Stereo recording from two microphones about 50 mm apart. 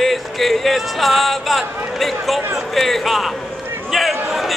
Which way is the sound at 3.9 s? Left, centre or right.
Centre.